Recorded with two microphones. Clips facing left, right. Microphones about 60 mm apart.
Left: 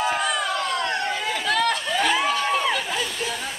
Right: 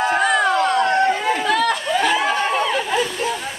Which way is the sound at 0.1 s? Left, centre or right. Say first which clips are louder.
Right 7 dB; right.